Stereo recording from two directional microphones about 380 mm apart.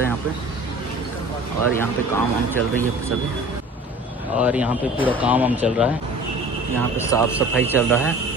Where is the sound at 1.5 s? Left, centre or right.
Centre.